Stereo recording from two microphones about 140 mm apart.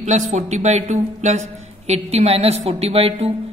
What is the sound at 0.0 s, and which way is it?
Speech, 55° right (ahead or behind).